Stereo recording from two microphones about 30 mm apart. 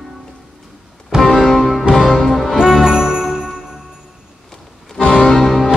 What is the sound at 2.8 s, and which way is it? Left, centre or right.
Music, right.